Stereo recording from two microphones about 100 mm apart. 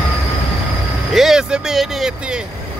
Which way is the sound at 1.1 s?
Centre (ahead or behind).